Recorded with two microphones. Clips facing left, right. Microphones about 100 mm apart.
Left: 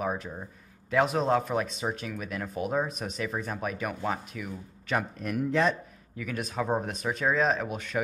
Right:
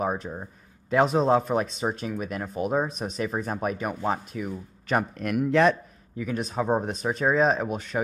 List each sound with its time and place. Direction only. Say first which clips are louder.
0.0 s speech: right 3 dB; 30° right (ahead or behind)
5.1 s speech: right 5 dB; 75° right (ahead or behind)
6.1 s speech: right 4 dB; 30° right (ahead or behind)